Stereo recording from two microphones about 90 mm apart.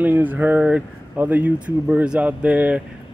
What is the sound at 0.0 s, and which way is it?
Speech, 20° right (ahead or behind).